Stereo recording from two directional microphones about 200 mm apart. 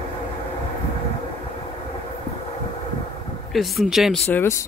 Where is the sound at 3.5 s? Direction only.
Centre (ahead or behind).